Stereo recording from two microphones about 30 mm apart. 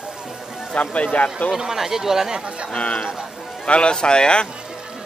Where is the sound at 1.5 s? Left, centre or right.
Centre.